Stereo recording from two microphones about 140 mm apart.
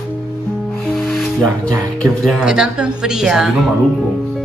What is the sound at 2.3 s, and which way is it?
A woman's voice, 5° right (ahead or behind).